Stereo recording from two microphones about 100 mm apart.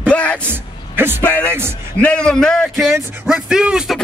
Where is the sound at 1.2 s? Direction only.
20° left (ahead or behind).